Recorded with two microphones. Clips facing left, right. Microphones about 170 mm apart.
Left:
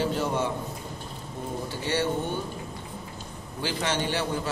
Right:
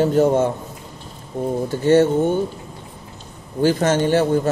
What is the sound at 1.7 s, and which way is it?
Speech, 50° right (ahead or behind).